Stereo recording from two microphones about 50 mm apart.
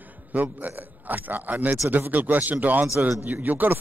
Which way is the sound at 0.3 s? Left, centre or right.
Right.